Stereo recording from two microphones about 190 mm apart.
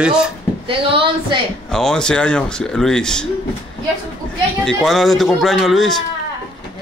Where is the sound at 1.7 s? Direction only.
Centre (ahead or behind).